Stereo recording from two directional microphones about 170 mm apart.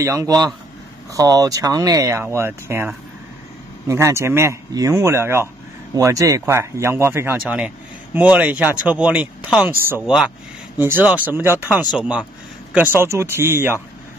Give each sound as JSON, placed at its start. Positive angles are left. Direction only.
{"t": 0.0, "sound": "a man's voice", "side_deg": -20}